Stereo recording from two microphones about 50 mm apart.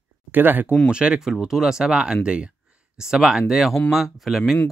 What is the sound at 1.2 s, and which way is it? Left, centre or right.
Speech, centre.